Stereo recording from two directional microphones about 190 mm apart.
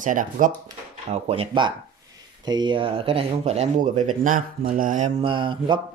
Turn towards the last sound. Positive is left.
turn(degrees=-25)  # may be behind; listen again after turning